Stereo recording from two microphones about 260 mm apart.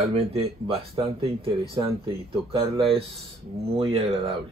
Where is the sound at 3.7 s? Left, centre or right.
Right.